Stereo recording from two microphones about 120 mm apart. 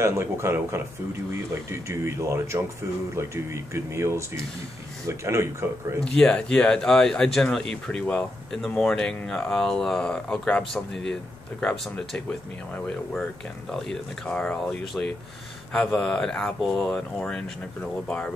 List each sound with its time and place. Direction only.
0.0 s speech: 20° right (ahead or behind)
5.9 s speech: 10° left (ahead or behind)